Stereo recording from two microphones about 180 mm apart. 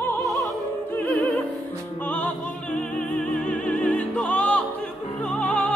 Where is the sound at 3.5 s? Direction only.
5° left (ahead or behind).